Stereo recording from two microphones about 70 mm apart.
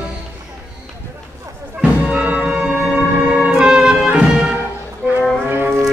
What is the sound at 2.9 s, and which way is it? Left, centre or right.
Music, centre.